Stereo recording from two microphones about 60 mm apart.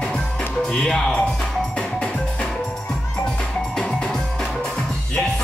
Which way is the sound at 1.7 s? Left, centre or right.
Centre.